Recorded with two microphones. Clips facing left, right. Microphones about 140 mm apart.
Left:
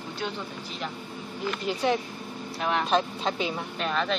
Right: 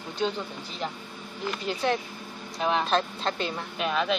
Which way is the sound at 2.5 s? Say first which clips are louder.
Right 2 dB; 20° right (ahead or behind).